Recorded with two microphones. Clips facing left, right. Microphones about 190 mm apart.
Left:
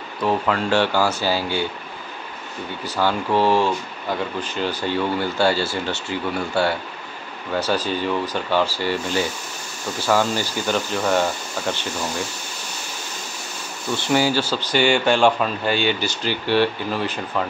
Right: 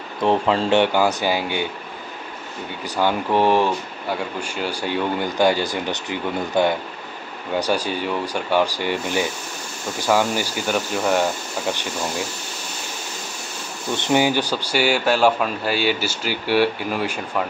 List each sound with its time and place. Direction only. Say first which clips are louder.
0.2 s speech: right 2 dB; 25° right (ahead or behind)
3.0 s speech: right 1 dB; 15° right (ahead or behind)
13.9 s speech: right 1 dB; 20° right (ahead or behind)